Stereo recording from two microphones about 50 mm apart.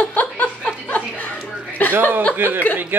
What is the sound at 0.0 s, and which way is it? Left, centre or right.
Chuckle, left.